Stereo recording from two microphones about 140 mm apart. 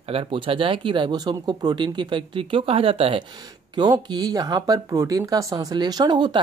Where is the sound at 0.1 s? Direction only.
40° right (ahead or behind).